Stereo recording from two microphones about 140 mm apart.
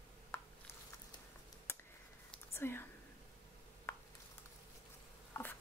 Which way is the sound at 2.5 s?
15° left (ahead or behind).